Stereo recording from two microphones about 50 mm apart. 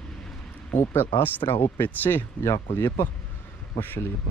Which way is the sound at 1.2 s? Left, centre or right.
Left.